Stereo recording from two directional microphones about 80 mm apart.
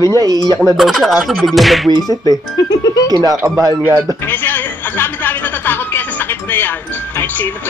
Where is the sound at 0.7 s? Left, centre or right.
Centre.